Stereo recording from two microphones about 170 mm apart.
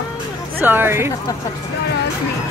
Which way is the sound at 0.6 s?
10° right (ahead or behind).